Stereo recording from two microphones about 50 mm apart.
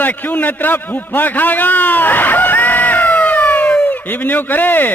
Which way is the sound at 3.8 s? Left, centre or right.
Left.